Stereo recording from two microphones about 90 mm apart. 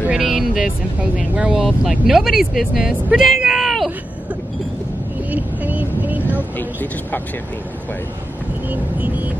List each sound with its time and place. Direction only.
0.1 s speech: 5° right (ahead or behind)
5.3 s vehicle: 20° right (ahead or behind)
6.3 s speech: 20° left (ahead or behind)
8.6 s speech: 20° right (ahead or behind)